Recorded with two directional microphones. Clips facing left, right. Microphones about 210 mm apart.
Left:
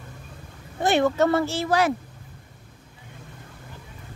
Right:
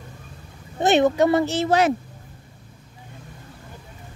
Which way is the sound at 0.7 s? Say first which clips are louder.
Right 3 dB; 20° right (ahead or behind).